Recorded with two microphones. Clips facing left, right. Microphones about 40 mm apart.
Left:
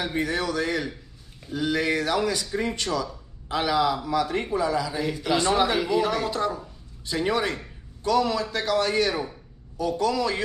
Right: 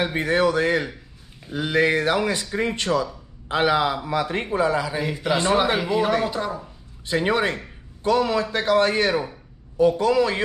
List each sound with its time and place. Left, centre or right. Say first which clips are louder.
0.0 s a man's voice: right 6 dB; right; by 6.6 s centre
7.1 s a man's voice: right 4 dB; right